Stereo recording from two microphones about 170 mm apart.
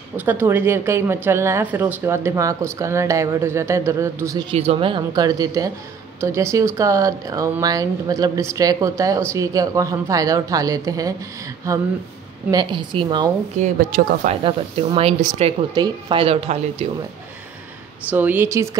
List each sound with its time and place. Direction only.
0.2 s a woman's voice: 10° right (ahead or behind)
4.5 s speech: 35° right (ahead or behind)
13.6 s speech: 50° right (ahead or behind)
14.4 s speech: 30° right (ahead or behind)
18.1 s a woman's voice: 10° right (ahead or behind)